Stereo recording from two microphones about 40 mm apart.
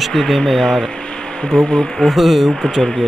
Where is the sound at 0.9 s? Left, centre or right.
Left.